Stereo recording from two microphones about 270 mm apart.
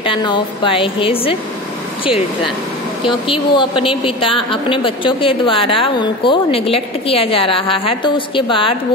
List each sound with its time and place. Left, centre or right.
0.0 s a woman's voice: centre
3.1 s a woman's voice: centre